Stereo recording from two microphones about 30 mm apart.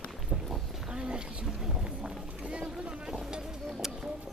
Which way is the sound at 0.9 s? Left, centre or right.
Right.